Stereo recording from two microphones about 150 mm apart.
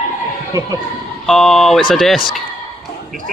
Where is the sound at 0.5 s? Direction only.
25° right (ahead or behind).